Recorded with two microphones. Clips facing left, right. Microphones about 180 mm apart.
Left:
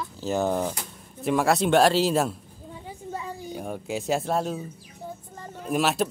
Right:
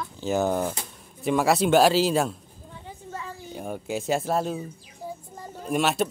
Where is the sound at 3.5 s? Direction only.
Centre (ahead or behind).